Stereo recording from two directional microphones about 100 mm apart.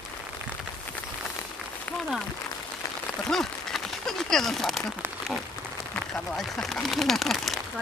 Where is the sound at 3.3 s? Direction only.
5° left (ahead or behind).